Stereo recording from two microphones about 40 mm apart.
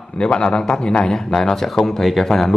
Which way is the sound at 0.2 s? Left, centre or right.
Left.